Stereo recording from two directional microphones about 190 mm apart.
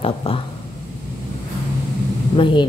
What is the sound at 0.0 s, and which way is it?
Speech, 30° left (ahead or behind).